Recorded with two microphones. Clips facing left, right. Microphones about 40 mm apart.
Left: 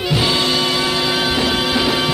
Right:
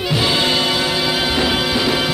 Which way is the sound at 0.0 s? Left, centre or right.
Centre.